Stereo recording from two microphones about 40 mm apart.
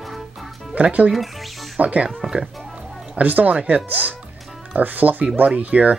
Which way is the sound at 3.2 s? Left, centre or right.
Right.